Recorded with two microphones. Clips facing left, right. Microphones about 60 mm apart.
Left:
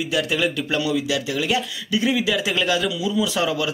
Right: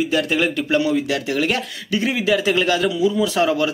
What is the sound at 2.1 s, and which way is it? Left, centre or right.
Speech, right.